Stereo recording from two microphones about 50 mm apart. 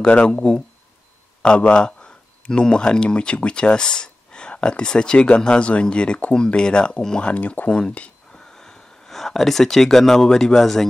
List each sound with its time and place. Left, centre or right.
0.0 s speech: left
7.2 s speech: left
8.5 s speech: centre